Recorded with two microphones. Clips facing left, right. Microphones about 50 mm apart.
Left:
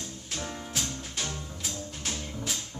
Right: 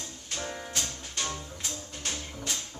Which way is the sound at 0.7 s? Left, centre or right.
Centre.